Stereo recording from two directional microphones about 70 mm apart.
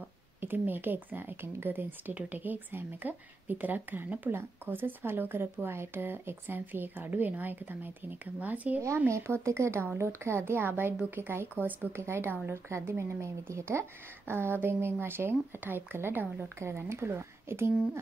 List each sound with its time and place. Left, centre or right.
0.4 s a woman's voice: right
8.8 s a woman's voice: right
12.0 s a woman's voice: right
16.5 s a woman's voice: right